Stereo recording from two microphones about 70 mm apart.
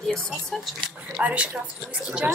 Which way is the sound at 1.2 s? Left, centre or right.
Centre.